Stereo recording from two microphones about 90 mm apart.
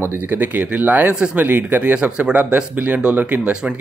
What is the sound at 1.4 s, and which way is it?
Speech, 20° right (ahead or behind).